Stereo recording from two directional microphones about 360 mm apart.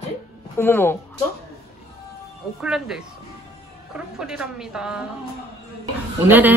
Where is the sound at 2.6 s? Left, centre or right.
Centre.